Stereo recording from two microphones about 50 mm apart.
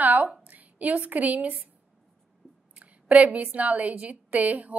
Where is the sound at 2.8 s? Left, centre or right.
Right.